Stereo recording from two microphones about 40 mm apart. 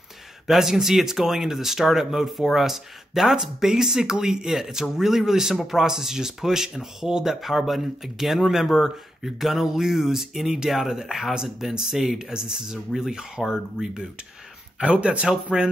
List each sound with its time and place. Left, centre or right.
0.5 s speech: centre
12.7 s speech: centre
14.8 s speech: right